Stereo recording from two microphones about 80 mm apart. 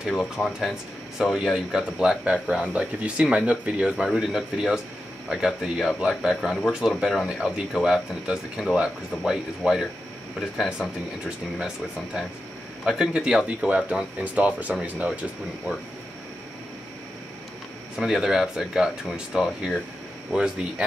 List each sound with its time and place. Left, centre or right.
0.1 s speech: centre
17.9 s speech: centre